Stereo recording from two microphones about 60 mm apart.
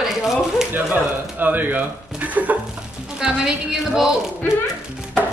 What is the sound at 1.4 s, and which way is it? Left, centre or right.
Speech, right.